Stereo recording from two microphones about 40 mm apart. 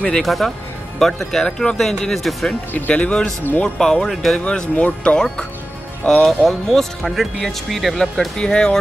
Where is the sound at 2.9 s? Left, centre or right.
Left; by 4.4 s centre.